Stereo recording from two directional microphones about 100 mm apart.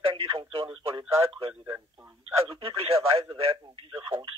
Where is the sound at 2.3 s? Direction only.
70° right (ahead or behind).